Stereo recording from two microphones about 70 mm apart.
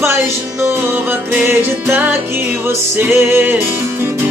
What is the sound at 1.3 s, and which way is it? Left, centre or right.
Music, right.